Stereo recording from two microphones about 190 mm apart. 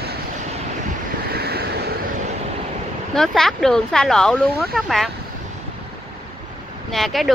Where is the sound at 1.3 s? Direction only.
55° right (ahead or behind).